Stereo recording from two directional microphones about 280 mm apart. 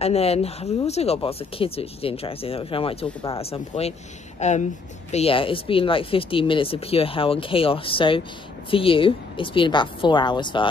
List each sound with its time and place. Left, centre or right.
0.0 s speech: left